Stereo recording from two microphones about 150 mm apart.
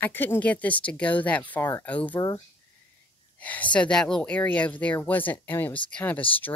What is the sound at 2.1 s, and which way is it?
Speech, 20° left (ahead or behind).